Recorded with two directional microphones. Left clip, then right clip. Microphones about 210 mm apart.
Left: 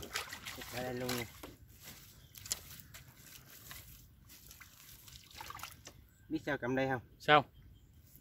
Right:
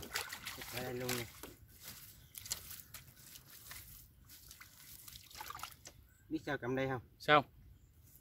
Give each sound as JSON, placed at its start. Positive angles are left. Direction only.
{"t": 0.0, "sound": "trickle", "side_deg": 0}
{"t": 0.9, "sound": "a sound", "side_deg": 0}
{"t": 4.5, "sound": "liquid", "side_deg": 0}
{"t": 6.3, "sound": "speech", "side_deg": 20}
{"t": 7.2, "sound": "speech", "side_deg": 0}